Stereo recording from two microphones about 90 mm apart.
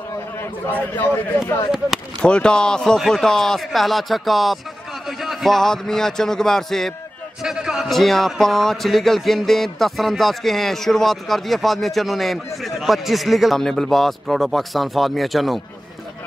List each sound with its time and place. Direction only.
0.4 s a man's voice: 20° left (ahead or behind)
2.2 s a man's voice: 10° left (ahead or behind)
7.4 s a man's voice: 5° right (ahead or behind)